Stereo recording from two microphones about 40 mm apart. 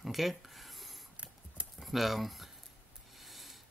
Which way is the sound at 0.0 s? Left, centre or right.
Centre.